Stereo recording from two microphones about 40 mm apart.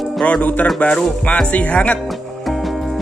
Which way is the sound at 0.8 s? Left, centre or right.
Left.